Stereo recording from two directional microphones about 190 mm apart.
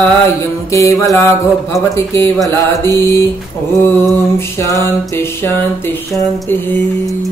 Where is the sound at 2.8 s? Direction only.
20° right (ahead or behind).